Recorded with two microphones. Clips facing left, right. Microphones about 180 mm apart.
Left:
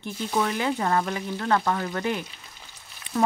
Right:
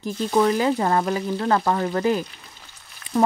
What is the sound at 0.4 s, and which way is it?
Speech, 35° right (ahead or behind).